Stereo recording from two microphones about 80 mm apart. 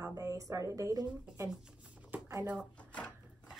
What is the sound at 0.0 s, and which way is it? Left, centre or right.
Speech, right.